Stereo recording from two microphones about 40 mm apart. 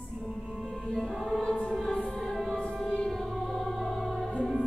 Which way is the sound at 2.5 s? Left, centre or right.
Left.